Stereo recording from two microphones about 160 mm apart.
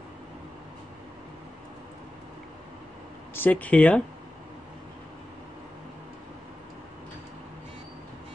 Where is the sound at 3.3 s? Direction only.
10° left (ahead or behind).